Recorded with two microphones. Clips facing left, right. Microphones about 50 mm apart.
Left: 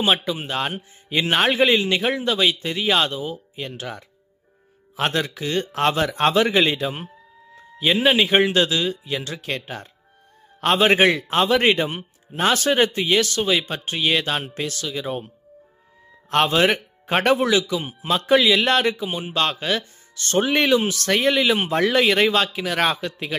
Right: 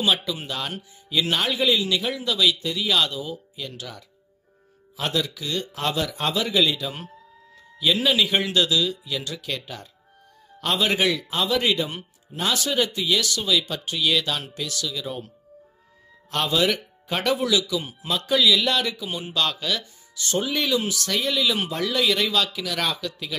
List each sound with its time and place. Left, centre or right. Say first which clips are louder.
0.0 s speech: left 3 dB; left
16.3 s speech: left 5 dB; left
19.0 s speech: left 3 dB; left
19.3 s speech: left 3 dB; left